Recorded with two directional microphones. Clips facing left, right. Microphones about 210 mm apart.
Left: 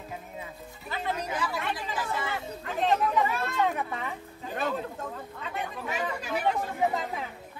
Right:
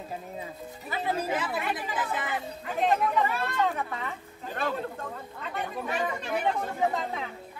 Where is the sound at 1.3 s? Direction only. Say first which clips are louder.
Right 2 dB; 20° right (ahead or behind).